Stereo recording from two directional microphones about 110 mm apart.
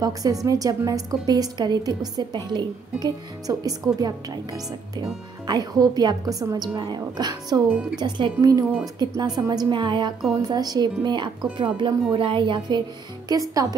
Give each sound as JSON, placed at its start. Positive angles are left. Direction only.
{"t": 0.0, "sound": "a woman's voice", "side_deg": -35}
{"t": 5.5, "sound": "a woman's voice", "side_deg": -40}